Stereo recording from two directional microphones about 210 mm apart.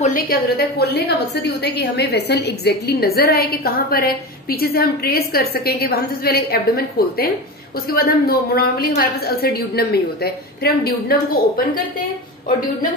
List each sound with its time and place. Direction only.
0.0 s a woman's voice: 40° left (ahead or behind)